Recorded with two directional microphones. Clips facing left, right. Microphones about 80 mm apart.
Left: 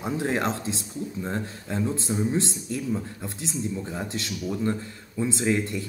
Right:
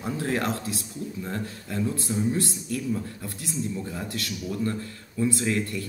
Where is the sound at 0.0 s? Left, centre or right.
Left.